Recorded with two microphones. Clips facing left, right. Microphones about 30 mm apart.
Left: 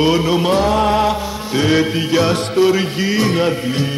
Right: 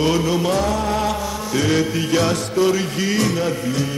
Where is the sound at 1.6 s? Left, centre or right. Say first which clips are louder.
Left 4 dB; left.